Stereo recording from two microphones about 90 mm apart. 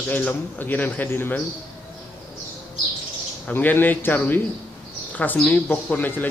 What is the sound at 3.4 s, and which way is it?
A man's voice, 20° left (ahead or behind).